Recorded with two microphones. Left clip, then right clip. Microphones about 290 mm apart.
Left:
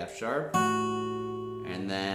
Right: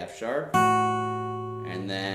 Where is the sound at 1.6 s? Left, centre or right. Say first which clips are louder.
Right 1 dB; centre.